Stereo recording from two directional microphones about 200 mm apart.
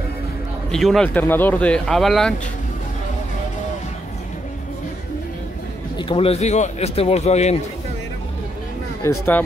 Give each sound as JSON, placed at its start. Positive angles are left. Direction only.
{"t": 0.7, "sound": "speech", "side_deg": 0}
{"t": 5.9, "sound": "speech", "side_deg": 25}
{"t": 9.0, "sound": "speech", "side_deg": 15}